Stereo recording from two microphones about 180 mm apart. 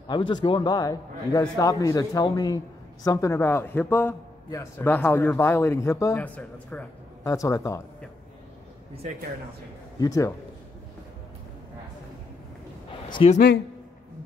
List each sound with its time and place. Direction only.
0.1 s a man's voice: 25° left (ahead or behind); by 6.9 s 5° left (ahead or behind)
7.2 s speech: 15° left (ahead or behind)
9.9 s a man's voice: 20° left (ahead or behind)
13.1 s a woman's voice: 35° left (ahead or behind)